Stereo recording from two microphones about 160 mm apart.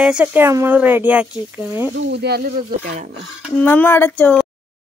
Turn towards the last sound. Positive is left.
turn(degrees=10)  # may be behind; listen again after turning